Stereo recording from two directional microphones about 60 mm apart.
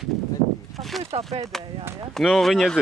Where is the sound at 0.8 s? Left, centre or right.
Centre.